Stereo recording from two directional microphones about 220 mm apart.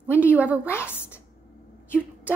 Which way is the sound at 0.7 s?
10° left (ahead or behind).